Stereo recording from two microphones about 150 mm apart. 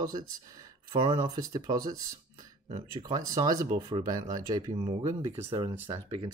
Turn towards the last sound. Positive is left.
turn(degrees=-15)  # may be behind; listen again after turning